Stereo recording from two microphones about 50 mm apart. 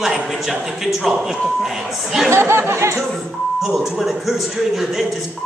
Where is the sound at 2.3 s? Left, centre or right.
Right.